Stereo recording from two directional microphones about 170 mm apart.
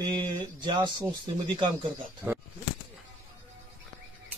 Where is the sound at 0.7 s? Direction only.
25° right (ahead or behind).